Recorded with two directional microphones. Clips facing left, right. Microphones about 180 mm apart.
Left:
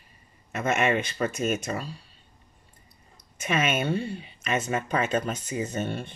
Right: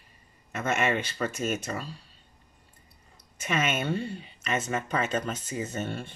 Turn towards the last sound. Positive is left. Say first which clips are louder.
# left 3 dB
turn(degrees=15)  # may be behind; listen again after turning